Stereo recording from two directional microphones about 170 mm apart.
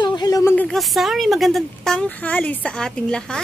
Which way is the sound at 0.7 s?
Centre (ahead or behind).